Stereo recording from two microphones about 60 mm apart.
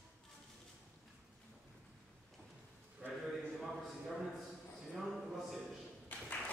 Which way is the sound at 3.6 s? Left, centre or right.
Centre.